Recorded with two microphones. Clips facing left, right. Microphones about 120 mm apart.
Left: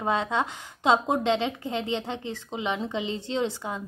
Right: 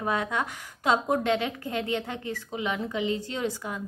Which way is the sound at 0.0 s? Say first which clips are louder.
Left 2 dB; 25° left (ahead or behind).